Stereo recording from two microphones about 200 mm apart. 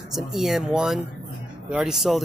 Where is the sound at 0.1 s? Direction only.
Centre (ahead or behind).